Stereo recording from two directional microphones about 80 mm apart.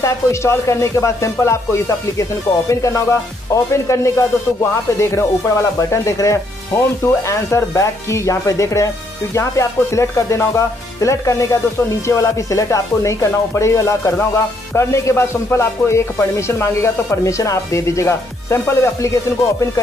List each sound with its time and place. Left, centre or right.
0.0 s music: left